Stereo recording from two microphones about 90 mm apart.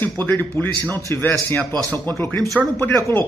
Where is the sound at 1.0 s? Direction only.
35° left (ahead or behind).